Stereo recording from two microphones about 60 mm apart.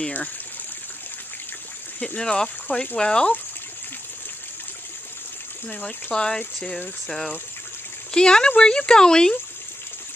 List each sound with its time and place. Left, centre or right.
2.0 s speech: left
5.7 s speech: left
6.1 s speech: centre